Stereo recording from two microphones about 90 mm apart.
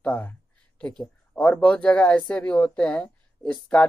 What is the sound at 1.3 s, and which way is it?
Speech, 20° left (ahead or behind).